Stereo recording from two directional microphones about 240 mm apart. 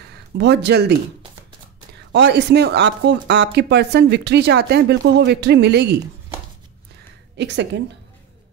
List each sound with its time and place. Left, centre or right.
0.1 s speech: right
2.1 s speech: right
7.3 s speech: right